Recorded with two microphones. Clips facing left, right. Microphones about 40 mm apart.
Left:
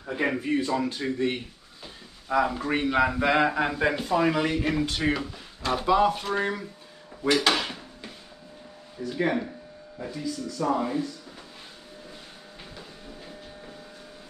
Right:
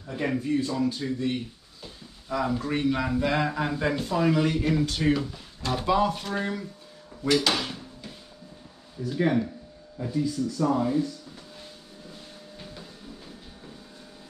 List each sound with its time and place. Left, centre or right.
0.0 s a man's voice: left
0.4 s speech: left
2.2 s a man's voice: left
7.2 s drawer open or close: centre
9.1 s a man's voice: centre